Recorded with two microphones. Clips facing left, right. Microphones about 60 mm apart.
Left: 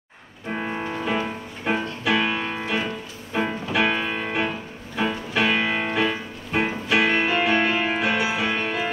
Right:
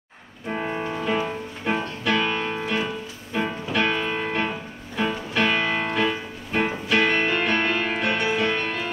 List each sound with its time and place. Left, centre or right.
0.5 s music: centre